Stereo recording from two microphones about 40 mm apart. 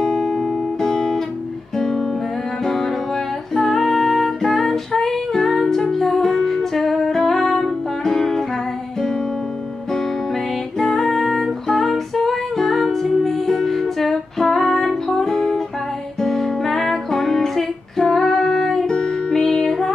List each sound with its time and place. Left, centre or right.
0.0 s music: centre
10.8 s music: centre